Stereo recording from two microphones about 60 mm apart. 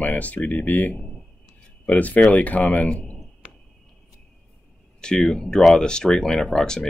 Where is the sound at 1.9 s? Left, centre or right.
Left.